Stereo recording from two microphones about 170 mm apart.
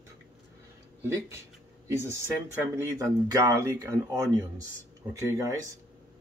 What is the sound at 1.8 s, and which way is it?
Speech, 15° right (ahead or behind).